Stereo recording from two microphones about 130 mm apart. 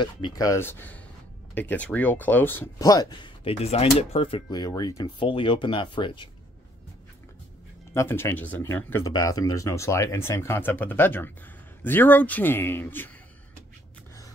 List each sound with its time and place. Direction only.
0.0 s speech: 35° left (ahead or behind)
0.5 s a man's voice: 15° left (ahead or behind)
2.8 s speech: 30° left (ahead or behind)
3.4 s speech: 50° left (ahead or behind)
4.6 s speech: 30° left (ahead or behind)
7.9 s a man's voice: 20° left (ahead or behind)